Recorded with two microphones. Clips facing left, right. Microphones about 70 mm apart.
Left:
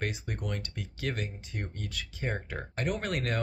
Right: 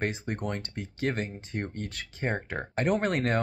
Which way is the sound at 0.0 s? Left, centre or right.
Right.